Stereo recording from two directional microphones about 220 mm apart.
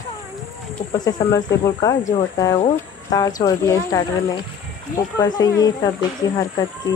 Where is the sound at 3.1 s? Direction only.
15° left (ahead or behind).